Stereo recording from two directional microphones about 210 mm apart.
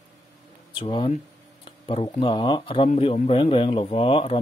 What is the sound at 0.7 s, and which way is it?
Speech, 25° left (ahead or behind).